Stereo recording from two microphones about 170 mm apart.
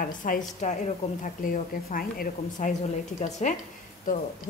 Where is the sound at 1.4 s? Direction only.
55° left (ahead or behind).